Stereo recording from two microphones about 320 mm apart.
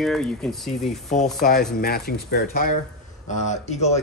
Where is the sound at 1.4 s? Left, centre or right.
Left.